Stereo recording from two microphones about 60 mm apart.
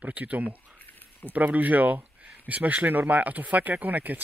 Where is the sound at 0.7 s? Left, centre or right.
Left.